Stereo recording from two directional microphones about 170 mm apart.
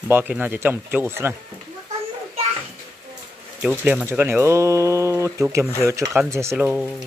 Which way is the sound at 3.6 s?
5° right (ahead or behind).